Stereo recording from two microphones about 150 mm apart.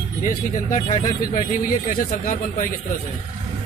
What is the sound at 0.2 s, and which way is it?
Speech, 65° left (ahead or behind).